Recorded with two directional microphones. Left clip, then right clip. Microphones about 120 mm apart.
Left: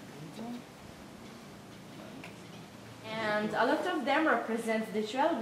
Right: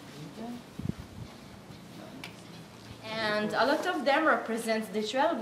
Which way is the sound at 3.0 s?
45° right (ahead or behind).